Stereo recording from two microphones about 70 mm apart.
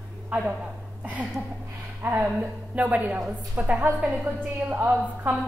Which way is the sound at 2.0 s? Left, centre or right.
Right.